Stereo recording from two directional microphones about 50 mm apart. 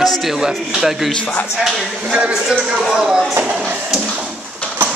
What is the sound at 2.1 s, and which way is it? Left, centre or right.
Speech, centre.